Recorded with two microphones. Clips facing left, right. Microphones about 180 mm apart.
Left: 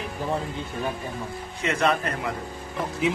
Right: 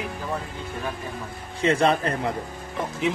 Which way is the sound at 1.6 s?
30° right (ahead or behind).